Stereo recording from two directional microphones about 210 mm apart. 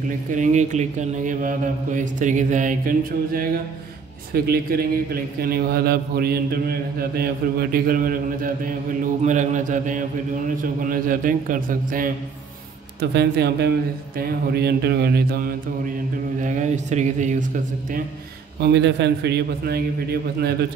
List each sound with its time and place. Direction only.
0.3 s a man's voice: 35° right (ahead or behind)
13.1 s a man's voice: 55° right (ahead or behind)
16.3 s speech: 35° right (ahead or behind)
18.6 s a man's voice: 55° right (ahead or behind)